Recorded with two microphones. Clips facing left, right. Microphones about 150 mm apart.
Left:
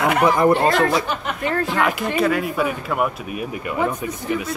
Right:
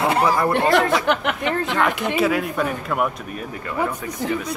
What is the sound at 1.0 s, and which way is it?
Speech, 65° right (ahead or behind).